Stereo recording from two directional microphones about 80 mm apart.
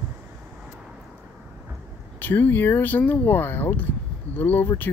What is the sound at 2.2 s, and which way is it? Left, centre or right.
Speech, left.